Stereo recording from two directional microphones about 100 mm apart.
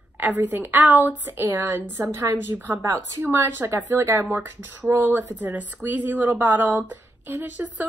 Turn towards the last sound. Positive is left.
turn(degrees=-15)  # may be behind; listen again after turning